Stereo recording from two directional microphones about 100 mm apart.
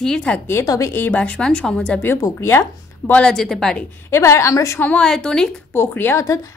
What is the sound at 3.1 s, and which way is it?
Speech, 10° left (ahead or behind).